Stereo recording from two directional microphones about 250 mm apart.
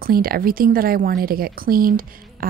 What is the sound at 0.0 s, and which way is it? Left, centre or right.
A woman's voice, right.